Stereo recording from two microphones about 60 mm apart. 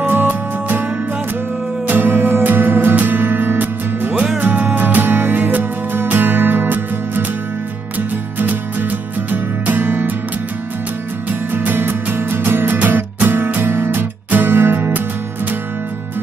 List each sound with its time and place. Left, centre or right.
0.0 s music: right
1.9 s music: right
4.4 s music: right
8.4 s music: right
11.2 s music: right